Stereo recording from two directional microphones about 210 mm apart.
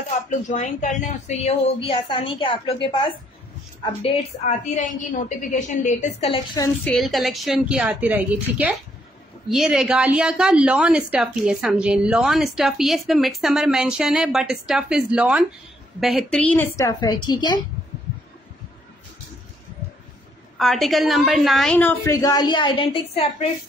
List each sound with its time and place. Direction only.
0.3 s a woman's voice: 35° left (ahead or behind)
3.8 s a woman's voice: 30° left (ahead or behind)
6.8 s a woman's voice: centre (ahead or behind); by 17.6 s 20° left (ahead or behind)
20.5 s a woman's voice: centre (ahead or behind); by 23.2 s 25° left (ahead or behind)